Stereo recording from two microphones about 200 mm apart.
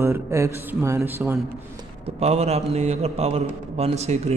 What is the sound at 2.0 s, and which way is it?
A man's voice, 30° right (ahead or behind).